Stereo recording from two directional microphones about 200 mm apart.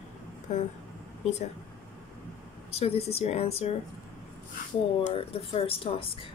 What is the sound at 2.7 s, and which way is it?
A woman's voice, 30° left (ahead or behind).